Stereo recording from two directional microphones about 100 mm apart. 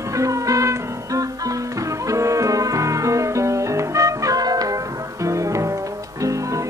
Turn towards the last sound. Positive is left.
turn(degrees=-30)  # may be behind; listen again after turning